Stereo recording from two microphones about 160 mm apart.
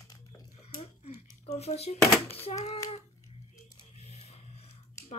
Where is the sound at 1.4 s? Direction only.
40° left (ahead or behind).